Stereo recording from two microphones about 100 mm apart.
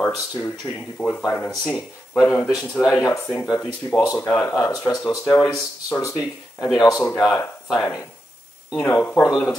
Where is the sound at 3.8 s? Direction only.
40° left (ahead or behind).